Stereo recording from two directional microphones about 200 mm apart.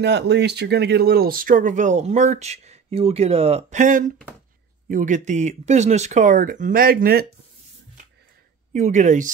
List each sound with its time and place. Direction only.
0.0 s speech: 55° right (ahead or behind)
8.7 s speech: 35° right (ahead or behind)